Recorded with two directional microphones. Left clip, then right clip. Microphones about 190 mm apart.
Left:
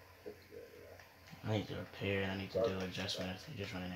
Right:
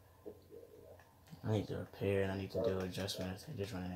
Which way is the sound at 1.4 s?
30° right (ahead or behind).